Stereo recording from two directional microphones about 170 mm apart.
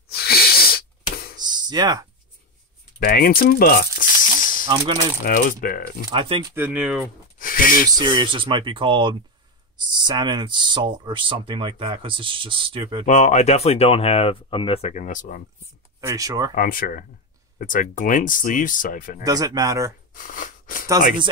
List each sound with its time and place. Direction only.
0.1 s sneeze: 65° left (ahead or behind)
1.4 s a sound: 25° right (ahead or behind)
3.0 s rattle: 60° left (ahead or behind)
5.2 s speech: 55° left (ahead or behind)
6.1 s speech: 30° right (ahead or behind)
6.5 s speech: 10° right (ahead or behind)
7.3 s a sound: 55° left (ahead or behind)
8.0 s speech: 30° right (ahead or behind)
13.0 s speech: 45° left (ahead or behind)
16.0 s speech: 20° right (ahead or behind)
16.5 s speech: 55° left (ahead or behind)
19.2 s speech: 20° right (ahead or behind)
20.2 s a sound: 50° left (ahead or behind)